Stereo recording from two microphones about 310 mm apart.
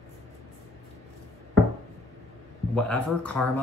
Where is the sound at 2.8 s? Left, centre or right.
Centre.